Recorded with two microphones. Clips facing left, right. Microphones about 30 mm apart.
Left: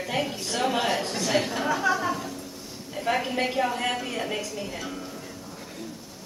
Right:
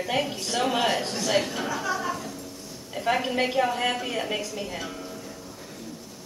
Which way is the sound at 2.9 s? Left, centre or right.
Centre.